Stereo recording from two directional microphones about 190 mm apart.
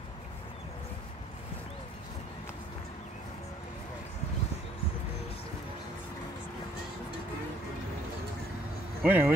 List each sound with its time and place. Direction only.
9.0 s speech: 10° right (ahead or behind)